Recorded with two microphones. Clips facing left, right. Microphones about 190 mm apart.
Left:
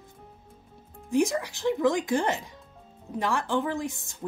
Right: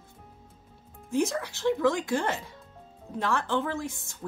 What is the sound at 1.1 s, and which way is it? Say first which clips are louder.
Speech: left 3 dB; 15° left (ahead or behind).